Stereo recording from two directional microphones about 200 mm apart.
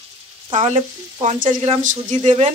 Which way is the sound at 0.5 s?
35° right (ahead or behind).